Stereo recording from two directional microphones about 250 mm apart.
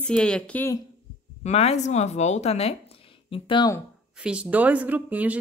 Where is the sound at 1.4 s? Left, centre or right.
Left.